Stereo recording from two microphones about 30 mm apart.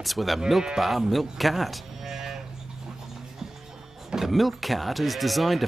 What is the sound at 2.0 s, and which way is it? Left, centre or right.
Music, centre.